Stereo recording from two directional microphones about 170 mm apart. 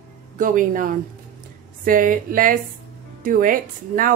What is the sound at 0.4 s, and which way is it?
A woman's voice, 50° right (ahead or behind).